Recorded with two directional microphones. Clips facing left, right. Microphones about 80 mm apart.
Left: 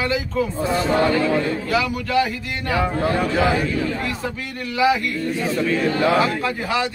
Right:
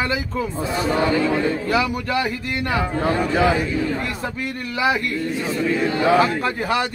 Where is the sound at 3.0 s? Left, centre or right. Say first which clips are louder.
Right 3 dB; right.